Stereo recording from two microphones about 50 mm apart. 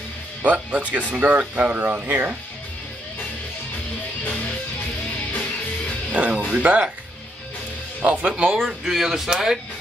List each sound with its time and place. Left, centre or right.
0.4 s speech: right
6.2 s speech: right
8.0 s speech: right
8.5 s speech: centre